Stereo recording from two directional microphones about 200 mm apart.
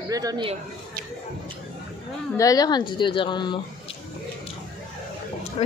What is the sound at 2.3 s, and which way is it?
A woman's voice, 20° left (ahead or behind).